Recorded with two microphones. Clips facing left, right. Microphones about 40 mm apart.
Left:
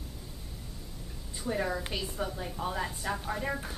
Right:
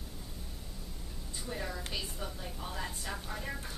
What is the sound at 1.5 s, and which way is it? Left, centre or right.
A woman's voice, left.